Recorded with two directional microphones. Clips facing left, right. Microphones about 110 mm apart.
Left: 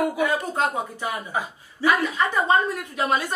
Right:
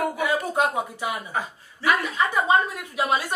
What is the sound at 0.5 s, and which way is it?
Speech, 15° right (ahead or behind).